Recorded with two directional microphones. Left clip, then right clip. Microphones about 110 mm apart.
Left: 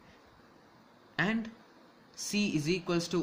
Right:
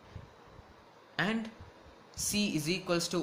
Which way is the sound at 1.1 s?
35° left (ahead or behind).